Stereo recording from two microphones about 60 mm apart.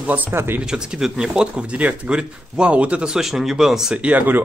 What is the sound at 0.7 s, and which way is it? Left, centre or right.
Speech, centre.